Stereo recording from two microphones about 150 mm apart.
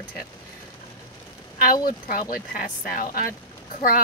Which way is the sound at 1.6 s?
70° left (ahead or behind).